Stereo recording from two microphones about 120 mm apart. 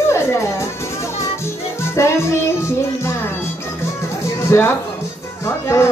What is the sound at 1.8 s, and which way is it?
Music, 20° left (ahead or behind).